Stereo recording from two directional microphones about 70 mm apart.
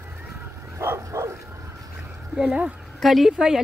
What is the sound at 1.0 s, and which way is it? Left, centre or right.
Dog, right.